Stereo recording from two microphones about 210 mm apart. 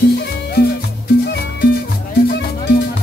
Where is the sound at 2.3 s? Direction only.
50° left (ahead or behind).